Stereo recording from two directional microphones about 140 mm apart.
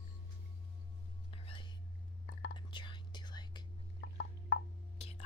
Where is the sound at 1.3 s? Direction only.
40° left (ahead or behind).